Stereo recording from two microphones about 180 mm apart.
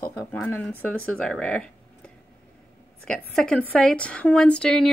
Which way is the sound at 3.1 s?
5° left (ahead or behind).